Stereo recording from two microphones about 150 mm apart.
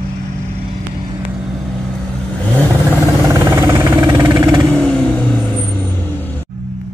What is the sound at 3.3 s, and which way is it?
Vehicle, 20° right (ahead or behind).